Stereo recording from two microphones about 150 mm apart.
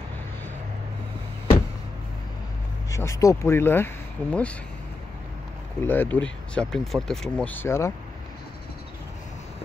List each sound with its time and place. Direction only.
2.9 s speech: 20° left (ahead or behind)
5.8 s speech: 15° left (ahead or behind)